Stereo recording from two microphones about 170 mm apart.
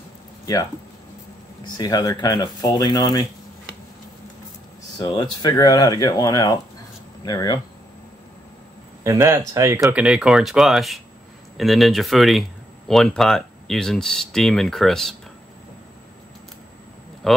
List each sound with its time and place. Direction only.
1.6 s speech: 25° left (ahead or behind)
4.9 s speech: 25° left (ahead or behind)
9.0 s speech: 15° right (ahead or behind); by 15.1 s centre (ahead or behind)